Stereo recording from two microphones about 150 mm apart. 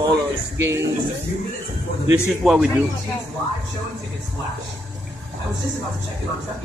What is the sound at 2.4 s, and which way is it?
Speech, centre (ahead or behind).